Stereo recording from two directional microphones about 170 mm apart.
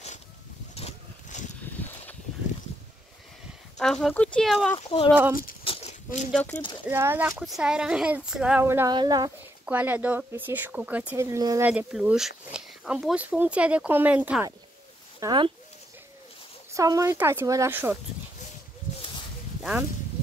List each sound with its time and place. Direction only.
0.7 s vehicle: 40° left (ahead or behind)
3.7 s speech: 5° left (ahead or behind)
4.7 s speech: 35° left (ahead or behind)
5.6 s a sound: 35° left (ahead or behind)
6.3 s speech: 10° left (ahead or behind)
6.9 s speech: 15° right (ahead or behind)
7.3 s speech: centre (ahead or behind)
8.9 s speech: 25° right (ahead or behind)
9.7 s speech: 10° right (ahead or behind)
11.7 s speech: 5° right (ahead or behind)
15.1 s speech: 25° right (ahead or behind)
16.7 s speech: 20° right (ahead or behind)
19.6 s speech: 10° right (ahead or behind)